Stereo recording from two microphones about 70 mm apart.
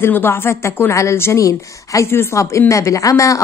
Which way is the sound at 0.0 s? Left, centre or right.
Left.